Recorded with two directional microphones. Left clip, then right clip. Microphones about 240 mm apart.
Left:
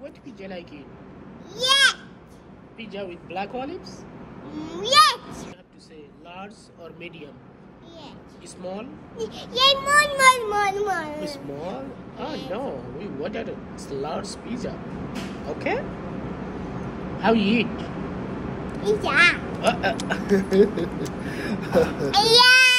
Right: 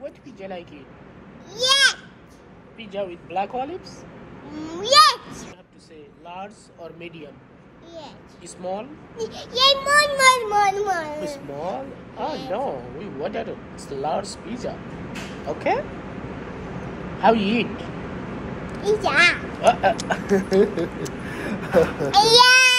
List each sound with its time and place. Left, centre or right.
0.4 s speech: centre
1.5 s a child's voice: centre
3.0 s a child's voice: centre
8.6 s speech: centre
9.1 s a child's voice: centre
11.1 s speech: centre
14.2 s speech: left
17.2 s speech: centre
21.3 s a sound: centre